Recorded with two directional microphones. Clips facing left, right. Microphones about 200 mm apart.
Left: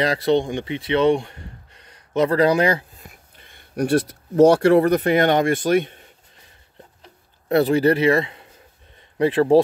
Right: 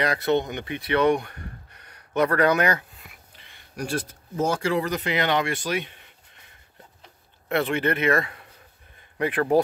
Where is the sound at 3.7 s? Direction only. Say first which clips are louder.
Left 10 dB; 65° left (ahead or behind).